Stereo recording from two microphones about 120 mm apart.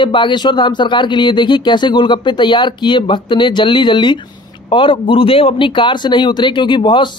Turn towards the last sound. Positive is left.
turn(degrees=40)  # may be behind; listen again after turning